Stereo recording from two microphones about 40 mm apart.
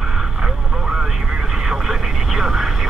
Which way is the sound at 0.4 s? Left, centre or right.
Right.